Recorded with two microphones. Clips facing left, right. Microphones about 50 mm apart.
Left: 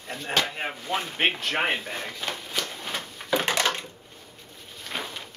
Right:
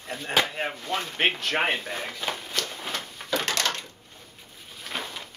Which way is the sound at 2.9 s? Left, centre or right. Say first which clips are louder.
Left 3 dB; centre.